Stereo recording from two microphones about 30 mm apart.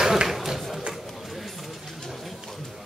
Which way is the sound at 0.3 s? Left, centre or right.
Centre.